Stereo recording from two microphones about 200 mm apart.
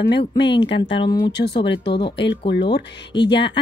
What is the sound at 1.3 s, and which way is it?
Speech, 55° left (ahead or behind).